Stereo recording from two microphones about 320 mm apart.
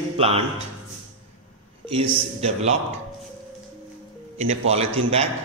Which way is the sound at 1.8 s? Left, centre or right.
Centre.